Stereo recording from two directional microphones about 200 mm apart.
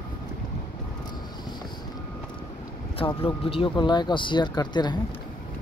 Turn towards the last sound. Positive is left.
turn(degrees=20)  # may be behind; listen again after turning